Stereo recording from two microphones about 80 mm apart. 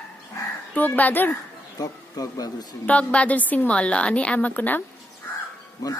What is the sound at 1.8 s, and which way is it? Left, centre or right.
Speech, left.